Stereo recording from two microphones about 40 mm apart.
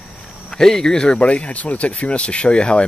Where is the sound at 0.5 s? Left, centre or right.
Centre.